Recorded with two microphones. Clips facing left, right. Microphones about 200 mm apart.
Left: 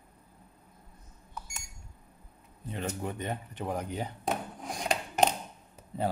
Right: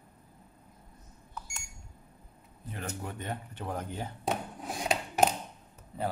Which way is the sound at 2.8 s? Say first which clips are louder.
Left 3 dB; 20° left (ahead or behind).